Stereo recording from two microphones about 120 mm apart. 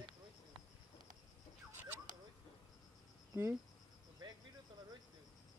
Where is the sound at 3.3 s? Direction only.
20° right (ahead or behind).